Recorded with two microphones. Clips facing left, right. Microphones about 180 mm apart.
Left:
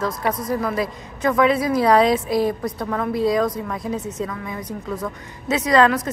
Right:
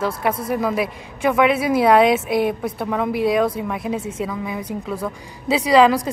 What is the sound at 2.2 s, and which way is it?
Speech, 65° right (ahead or behind).